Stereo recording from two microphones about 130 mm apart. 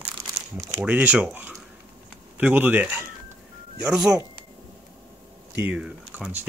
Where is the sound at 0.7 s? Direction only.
10° right (ahead or behind).